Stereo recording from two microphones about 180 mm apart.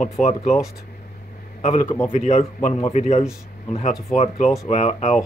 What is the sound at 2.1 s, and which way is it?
A man's voice, 40° left (ahead or behind).